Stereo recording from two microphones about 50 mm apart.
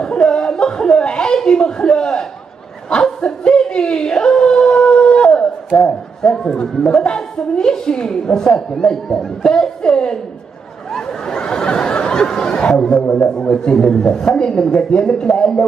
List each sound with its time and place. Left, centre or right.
0.0 s chuckle: centre
2.9 s a sound: centre
13.0 s a man's voice: left